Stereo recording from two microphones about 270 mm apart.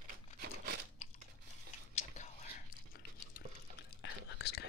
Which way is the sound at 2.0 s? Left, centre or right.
Left.